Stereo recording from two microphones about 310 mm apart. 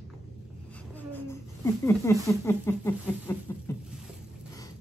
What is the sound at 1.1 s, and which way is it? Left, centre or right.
Speech, centre.